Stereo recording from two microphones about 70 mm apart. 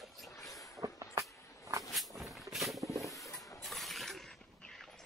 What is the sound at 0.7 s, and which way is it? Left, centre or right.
Vehicle, right.